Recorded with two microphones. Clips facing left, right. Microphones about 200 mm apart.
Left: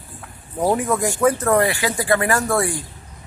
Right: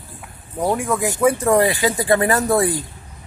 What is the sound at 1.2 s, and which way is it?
Speech, 10° right (ahead or behind).